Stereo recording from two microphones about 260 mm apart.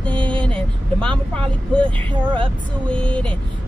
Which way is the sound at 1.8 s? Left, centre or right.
Centre.